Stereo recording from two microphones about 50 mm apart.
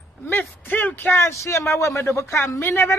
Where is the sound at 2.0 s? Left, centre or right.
Left.